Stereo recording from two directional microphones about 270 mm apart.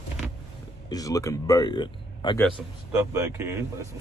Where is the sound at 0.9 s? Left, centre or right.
Centre.